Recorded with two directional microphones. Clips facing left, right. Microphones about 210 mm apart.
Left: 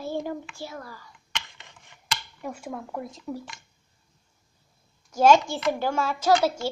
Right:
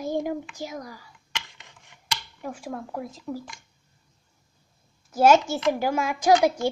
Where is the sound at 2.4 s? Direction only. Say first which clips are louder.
Right 2 dB; centre (ahead or behind).